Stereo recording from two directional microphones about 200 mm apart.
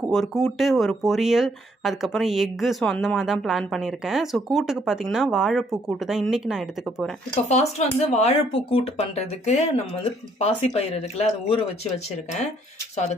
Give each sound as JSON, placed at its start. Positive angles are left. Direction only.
{"t": 0.1, "sound": "speech", "side_deg": 0}
{"t": 7.4, "sound": "speech", "side_deg": 35}